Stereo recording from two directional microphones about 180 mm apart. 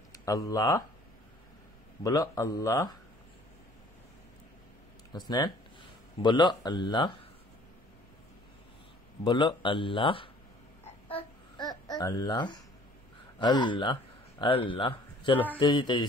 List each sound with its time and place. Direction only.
0.1 s speech: 20° left (ahead or behind)
2.0 s speech: 20° left (ahead or behind)
5.2 s speech: 20° left (ahead or behind)
9.2 s speech: 25° left (ahead or behind)
11.5 s babbling: 20° left (ahead or behind)
13.4 s speech: 25° left (ahead or behind)
15.3 s speech: 10° left (ahead or behind)
15.6 s speech: 25° left (ahead or behind)